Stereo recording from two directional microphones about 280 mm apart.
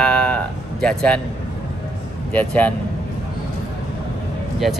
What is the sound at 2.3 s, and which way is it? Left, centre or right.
Speech, centre.